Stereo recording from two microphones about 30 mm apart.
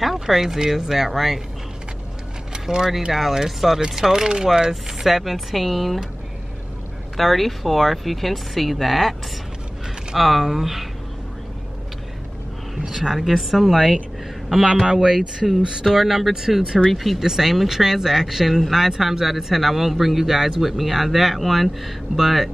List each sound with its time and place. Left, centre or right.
0.0 s speech: centre
2.5 s vehicle: right
3.1 s speech: centre
3.9 s speech: centre
7.2 s speech: centre
10.1 s speech: centre
12.7 s speech: centre
13.1 s speech: centre
14.9 s speech: right
15.9 s speech: centre
17.2 s speech: centre